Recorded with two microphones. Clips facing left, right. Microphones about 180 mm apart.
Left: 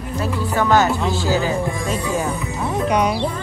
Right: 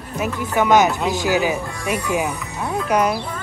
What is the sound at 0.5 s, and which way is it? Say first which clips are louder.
Speech: right 1 dB; 15° right (ahead or behind).